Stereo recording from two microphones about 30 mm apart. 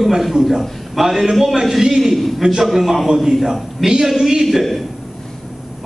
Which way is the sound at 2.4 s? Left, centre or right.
Centre.